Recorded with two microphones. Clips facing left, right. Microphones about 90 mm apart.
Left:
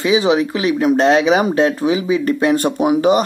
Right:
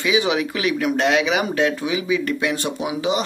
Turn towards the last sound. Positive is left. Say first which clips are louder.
# left 9 dB
turn(degrees=45)  # may be behind; listen again after turning